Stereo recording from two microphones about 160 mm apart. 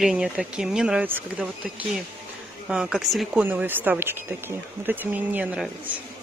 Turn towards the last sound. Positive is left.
turn(degrees=-5)  # may be behind; listen again after turning